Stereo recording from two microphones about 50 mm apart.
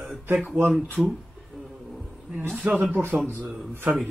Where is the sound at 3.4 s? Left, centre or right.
Centre.